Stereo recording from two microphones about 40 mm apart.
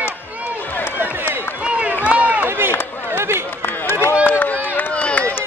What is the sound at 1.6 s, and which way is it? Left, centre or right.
Run, right.